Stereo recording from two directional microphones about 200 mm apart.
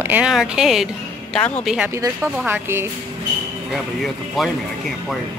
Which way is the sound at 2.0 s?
15° right (ahead or behind).